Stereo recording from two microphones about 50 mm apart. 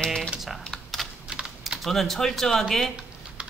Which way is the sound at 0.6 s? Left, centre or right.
Centre.